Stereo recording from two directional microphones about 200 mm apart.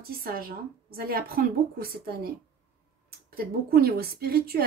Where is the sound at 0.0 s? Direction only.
50° right (ahead or behind).